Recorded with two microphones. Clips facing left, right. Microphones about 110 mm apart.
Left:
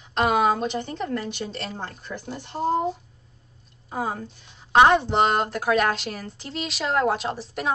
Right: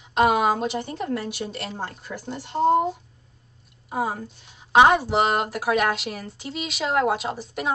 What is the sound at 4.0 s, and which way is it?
Speech, 30° right (ahead or behind).